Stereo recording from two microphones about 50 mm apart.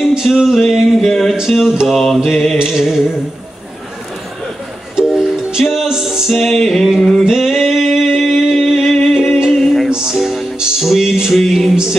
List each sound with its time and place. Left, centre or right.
0.0 s music: centre
1.9 s mantra: centre
2.6 s a sound: centre
4.9 s music: centre
7.2 s a sound: centre
9.0 s music: centre
9.8 s music: centre
10.1 s music: centre